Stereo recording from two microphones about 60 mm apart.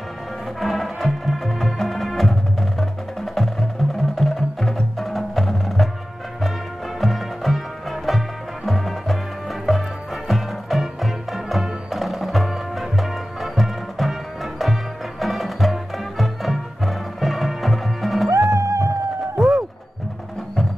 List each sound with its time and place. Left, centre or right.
0.6 s music: centre
7.0 s music: centre
18.5 s music: right
19.3 s a sound: centre